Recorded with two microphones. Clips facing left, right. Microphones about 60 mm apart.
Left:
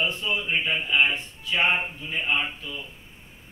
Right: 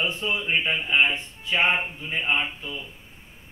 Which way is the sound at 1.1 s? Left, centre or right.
Right.